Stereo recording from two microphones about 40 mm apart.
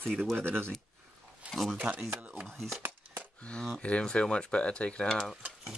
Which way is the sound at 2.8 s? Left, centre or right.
Right.